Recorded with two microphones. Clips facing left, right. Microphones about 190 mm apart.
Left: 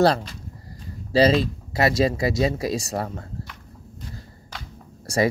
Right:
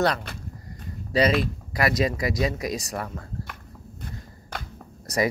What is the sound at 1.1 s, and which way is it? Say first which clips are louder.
Speech: left 4 dB; 30° left (ahead or behind).